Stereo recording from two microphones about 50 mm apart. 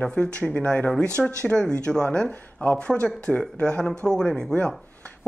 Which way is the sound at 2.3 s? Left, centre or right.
Left.